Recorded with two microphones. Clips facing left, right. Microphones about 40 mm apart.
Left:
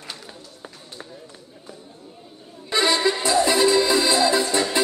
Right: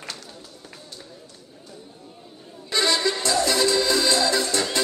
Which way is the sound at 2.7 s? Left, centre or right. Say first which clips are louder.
Left 2 dB; centre.